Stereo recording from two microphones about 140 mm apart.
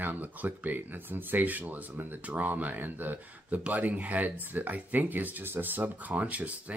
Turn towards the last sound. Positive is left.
turn(degrees=-10)  # may be behind; listen again after turning